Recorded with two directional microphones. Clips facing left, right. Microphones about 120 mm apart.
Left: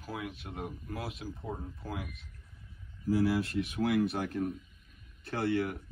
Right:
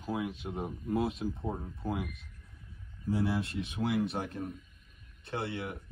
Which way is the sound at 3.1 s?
25° right (ahead or behind).